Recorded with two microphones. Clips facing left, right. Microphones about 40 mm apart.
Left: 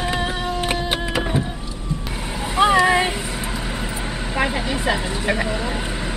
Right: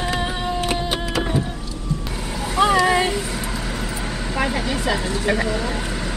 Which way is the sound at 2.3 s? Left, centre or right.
Centre.